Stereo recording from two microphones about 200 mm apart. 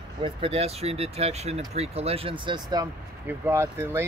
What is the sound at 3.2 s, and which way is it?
Speech, 10° right (ahead or behind).